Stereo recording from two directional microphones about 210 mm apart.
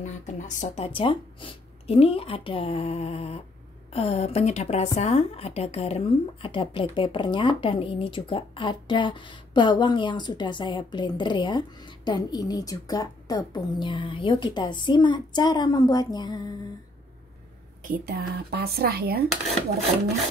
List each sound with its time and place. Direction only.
0.0 s a woman's voice: 35° left (ahead or behind); by 16.3 s 20° left (ahead or behind)
17.8 s a woman's voice: 45° right (ahead or behind)